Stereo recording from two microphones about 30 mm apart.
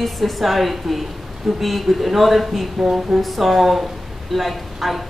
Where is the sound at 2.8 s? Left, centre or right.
Right.